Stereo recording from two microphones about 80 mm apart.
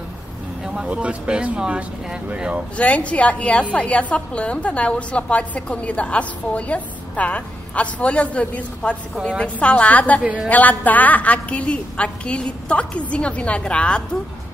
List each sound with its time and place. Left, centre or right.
0.7 s speech: centre
2.8 s a woman's voice: centre
10.2 s speech: centre
10.5 s a woman's voice: left